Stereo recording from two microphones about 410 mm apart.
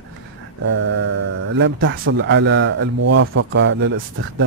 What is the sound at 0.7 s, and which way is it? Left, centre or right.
A man's voice, right.